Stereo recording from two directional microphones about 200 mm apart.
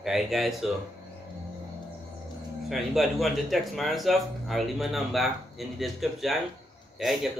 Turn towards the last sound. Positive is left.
turn(degrees=0)  # may be behind; listen again after turning